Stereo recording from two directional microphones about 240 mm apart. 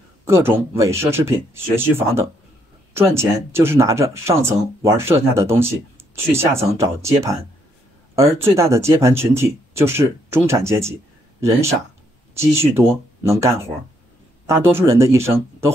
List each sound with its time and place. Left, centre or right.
0.2 s speech: centre
12.4 s speech: centre